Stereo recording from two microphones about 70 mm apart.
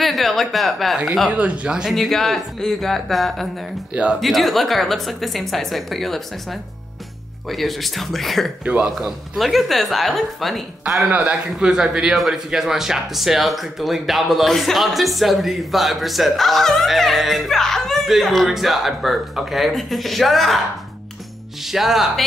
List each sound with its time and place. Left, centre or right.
0.0 s speech: centre
1.3 s a man's voice: centre
2.0 s speech: centre
3.9 s a man's voice: centre
4.2 s speech: centre
8.6 s a man's voice: centre
11.1 s a man's voice: centre
21.6 s speech: centre